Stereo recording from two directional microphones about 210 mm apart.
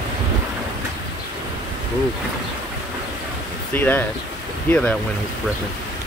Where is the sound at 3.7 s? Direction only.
10° left (ahead or behind).